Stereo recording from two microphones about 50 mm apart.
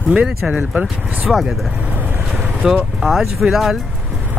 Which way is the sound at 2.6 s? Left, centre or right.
Centre.